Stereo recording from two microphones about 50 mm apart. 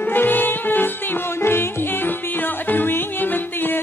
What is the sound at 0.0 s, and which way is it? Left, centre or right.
Music, left.